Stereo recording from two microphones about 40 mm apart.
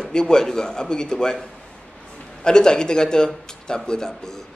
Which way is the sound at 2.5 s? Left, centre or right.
Centre.